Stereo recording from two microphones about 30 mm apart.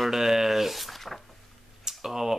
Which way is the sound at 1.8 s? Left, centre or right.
Centre.